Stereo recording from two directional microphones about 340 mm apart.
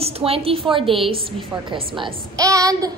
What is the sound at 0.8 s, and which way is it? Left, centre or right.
Speech, centre.